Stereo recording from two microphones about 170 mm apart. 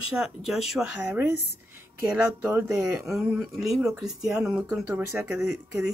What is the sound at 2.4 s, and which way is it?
Speech, 10° right (ahead or behind).